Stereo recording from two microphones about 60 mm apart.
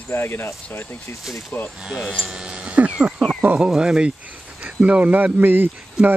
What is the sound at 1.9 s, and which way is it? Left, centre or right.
Speech, centre.